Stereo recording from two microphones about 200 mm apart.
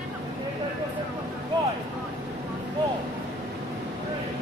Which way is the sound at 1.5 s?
20° right (ahead or behind).